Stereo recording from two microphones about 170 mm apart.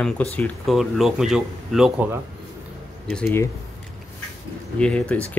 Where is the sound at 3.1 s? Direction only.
15° left (ahead or behind).